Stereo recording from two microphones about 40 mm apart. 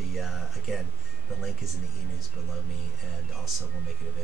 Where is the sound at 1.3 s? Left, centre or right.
Centre.